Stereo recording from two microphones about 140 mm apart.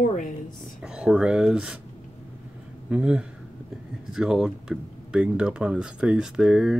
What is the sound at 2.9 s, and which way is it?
Speech, 10° right (ahead or behind).